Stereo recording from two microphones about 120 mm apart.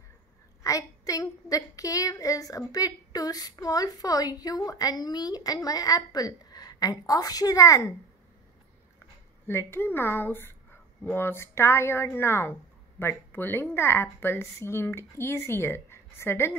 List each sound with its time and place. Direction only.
0.7 s a woman's voice: 30° left (ahead or behind)
9.5 s speech: 20° left (ahead or behind)